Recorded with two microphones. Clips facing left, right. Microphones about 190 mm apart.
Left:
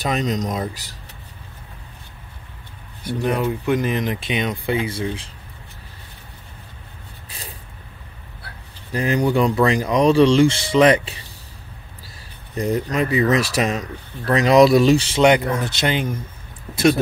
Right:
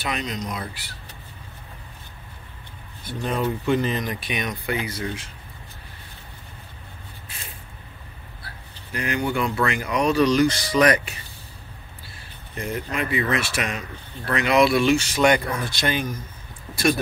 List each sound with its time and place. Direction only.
0.0 s speech: 40° left (ahead or behind)
3.1 s speech: 15° left (ahead or behind); by 5.3 s 30° left (ahead or behind)
7.2 s spray: 35° left (ahead or behind)
8.9 s speech: 35° left (ahead or behind)
12.5 s speech: 35° left (ahead or behind); by 16.2 s 20° left (ahead or behind)